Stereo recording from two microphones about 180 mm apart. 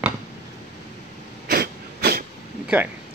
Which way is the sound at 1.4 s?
55° right (ahead or behind).